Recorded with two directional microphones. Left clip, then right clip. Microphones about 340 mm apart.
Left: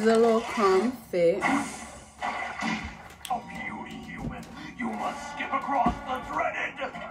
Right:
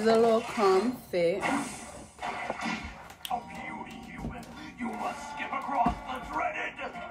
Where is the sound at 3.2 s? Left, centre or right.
Centre.